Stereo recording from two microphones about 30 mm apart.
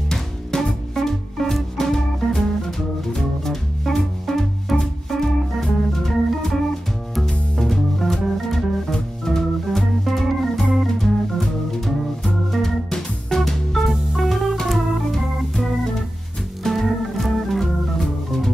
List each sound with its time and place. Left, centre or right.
0.7 s music: centre
5.6 s organ: centre
7.5 s music: centre
8.9 s organ: centre
13.4 s music: centre
14.7 s organ: centre